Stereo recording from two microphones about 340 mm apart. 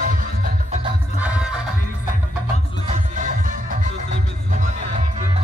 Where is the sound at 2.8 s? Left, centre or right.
Right.